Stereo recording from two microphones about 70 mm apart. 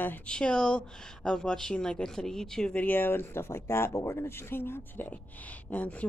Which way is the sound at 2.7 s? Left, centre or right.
Left.